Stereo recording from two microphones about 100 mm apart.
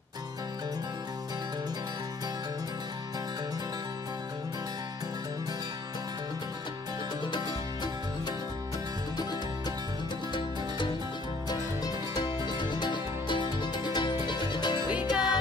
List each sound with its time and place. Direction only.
11.4 s music: 45° left (ahead or behind)